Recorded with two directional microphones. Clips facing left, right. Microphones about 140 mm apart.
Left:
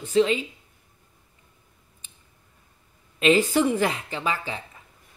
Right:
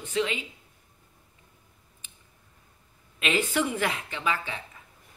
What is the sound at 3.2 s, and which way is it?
Speech, 35° left (ahead or behind).